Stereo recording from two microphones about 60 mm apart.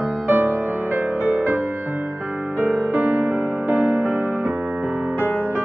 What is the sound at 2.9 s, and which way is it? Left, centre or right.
Music, right.